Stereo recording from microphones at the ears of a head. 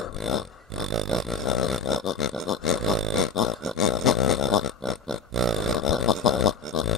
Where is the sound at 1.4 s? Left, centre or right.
Left.